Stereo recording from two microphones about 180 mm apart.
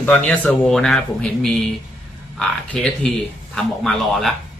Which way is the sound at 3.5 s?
Centre (ahead or behind).